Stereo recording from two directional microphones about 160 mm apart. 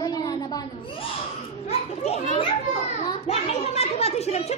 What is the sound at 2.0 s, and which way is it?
Speech, 45° left (ahead or behind).